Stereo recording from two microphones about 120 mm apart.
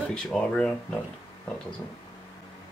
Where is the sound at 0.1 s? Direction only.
5° left (ahead or behind).